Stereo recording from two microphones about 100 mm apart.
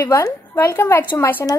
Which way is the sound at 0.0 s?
25° left (ahead or behind).